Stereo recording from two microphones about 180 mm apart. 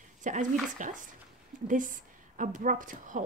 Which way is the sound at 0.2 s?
45° right (ahead or behind).